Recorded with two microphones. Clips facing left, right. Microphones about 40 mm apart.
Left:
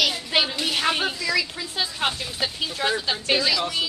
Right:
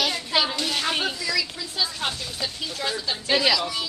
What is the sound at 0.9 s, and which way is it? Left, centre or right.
Speech, centre.